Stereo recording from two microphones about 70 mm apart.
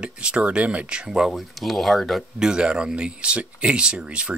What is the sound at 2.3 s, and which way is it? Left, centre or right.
Speech, centre.